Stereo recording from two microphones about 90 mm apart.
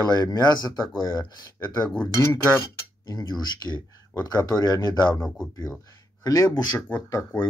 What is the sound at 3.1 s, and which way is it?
Speech, 45° left (ahead or behind).